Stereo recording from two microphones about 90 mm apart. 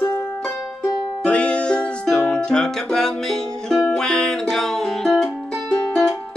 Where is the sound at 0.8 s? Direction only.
15° left (ahead or behind).